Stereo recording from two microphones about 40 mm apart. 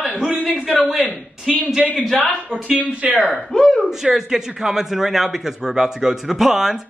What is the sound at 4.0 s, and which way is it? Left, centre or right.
Speech, centre.